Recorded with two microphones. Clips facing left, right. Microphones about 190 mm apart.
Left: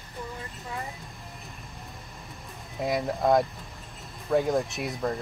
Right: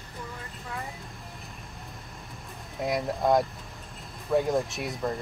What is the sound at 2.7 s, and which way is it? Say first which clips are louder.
Speech: left 1 dB; centre (ahead or behind).